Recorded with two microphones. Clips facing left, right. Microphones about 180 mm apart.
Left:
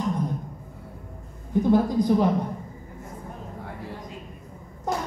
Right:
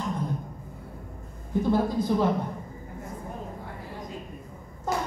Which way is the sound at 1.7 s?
15° left (ahead or behind).